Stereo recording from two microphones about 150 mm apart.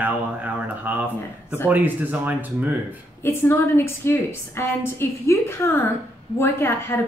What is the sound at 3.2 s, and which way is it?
A woman's voice, 15° left (ahead or behind).